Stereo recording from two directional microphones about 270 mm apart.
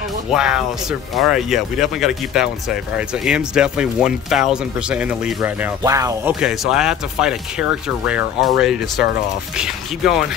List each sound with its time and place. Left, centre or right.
0.3 s speech: centre